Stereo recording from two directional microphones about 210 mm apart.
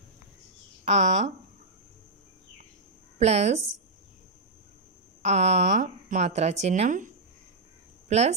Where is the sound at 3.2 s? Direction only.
30° right (ahead or behind).